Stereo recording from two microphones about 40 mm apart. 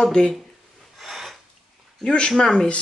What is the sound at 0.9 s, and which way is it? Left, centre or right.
Filing, centre.